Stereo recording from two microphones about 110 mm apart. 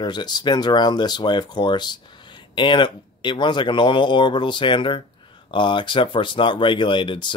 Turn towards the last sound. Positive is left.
turn(degrees=45)  # may be behind; listen again after turning